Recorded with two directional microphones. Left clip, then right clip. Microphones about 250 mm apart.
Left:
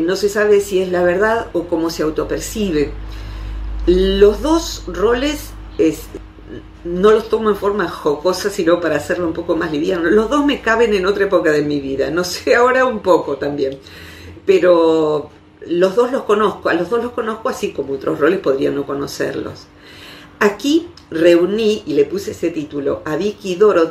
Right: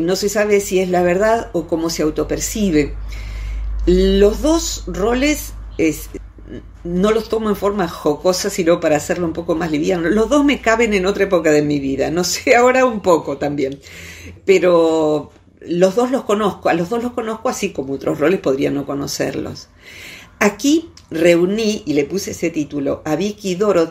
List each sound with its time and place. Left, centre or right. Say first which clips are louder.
0.0 s speech: left 1 dB; right
3.8 s speech: left 2 dB; right
7.0 s speech: left 4 dB; right
21.2 s speech: left 2 dB; right